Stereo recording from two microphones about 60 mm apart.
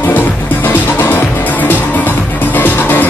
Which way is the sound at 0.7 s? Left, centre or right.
Left.